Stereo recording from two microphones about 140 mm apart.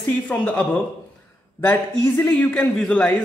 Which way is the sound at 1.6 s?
15° left (ahead or behind).